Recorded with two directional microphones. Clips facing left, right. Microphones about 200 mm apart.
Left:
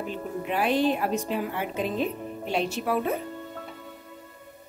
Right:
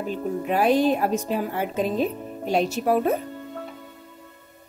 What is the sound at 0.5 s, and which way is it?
Speech, 40° right (ahead or behind).